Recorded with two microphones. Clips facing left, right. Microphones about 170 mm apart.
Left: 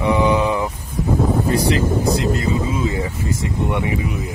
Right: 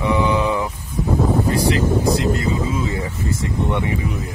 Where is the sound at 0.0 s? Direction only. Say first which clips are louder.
Left 2 dB; 15° left (ahead or behind).